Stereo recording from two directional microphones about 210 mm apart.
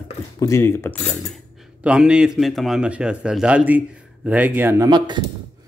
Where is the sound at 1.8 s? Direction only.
5° right (ahead or behind); by 5.3 s 20° right (ahead or behind).